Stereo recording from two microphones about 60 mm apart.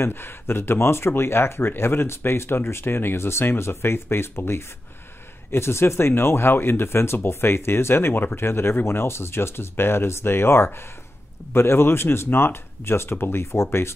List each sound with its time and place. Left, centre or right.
0.0 s speech: left